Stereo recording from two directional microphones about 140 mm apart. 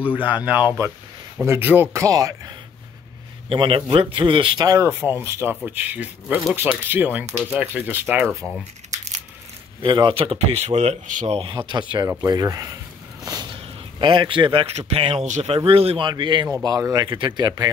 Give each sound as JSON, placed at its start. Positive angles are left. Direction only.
{"t": 0.5, "sound": "speech", "side_deg": -10}
{"t": 3.4, "sound": "speech", "side_deg": -40}
{"t": 9.8, "sound": "speech", "side_deg": -35}
{"t": 11.4, "sound": "speech", "side_deg": -35}
{"t": 15.2, "sound": "speech", "side_deg": -60}
{"t": 15.5, "sound": "speech", "side_deg": -40}
{"t": 16.1, "sound": "speech", "side_deg": -35}